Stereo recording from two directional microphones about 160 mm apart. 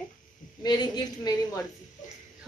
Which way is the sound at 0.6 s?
25° left (ahead or behind).